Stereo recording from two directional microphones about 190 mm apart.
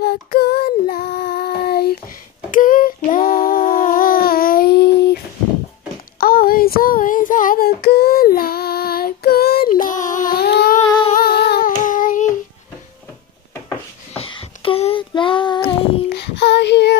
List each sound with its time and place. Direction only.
0.0 s child singing: 55° left (ahead or behind)
2.5 s a sound: 45° left (ahead or behind)
6.1 s child singing: 50° left (ahead or behind)
14.1 s child singing: 30° left (ahead or behind)
15.6 s child singing: 60° left (ahead or behind)